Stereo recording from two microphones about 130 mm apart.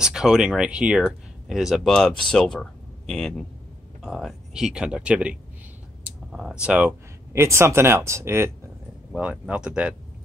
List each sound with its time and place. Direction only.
0.0 s speech: 5° right (ahead or behind); by 8.5 s 20° right (ahead or behind)
9.1 s speech: 10° right (ahead or behind)